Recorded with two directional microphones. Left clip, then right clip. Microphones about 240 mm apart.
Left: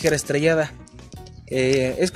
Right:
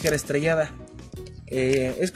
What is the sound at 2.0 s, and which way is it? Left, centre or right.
Speech, left.